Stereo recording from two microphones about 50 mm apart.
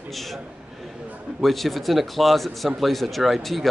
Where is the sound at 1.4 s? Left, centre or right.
Centre.